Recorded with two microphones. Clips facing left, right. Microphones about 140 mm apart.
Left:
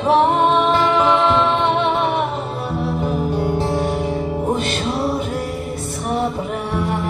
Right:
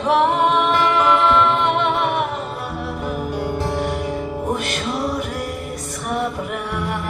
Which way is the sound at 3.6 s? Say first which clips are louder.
Left 3 dB; 25° left (ahead or behind).